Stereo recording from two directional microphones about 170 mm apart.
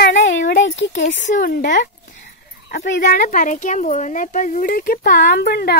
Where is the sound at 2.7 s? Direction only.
90° left.